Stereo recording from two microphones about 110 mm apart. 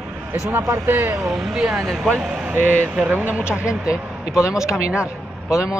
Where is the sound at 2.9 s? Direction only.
15° right (ahead or behind).